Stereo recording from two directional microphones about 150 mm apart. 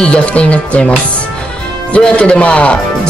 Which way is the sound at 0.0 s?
5° left (ahead or behind).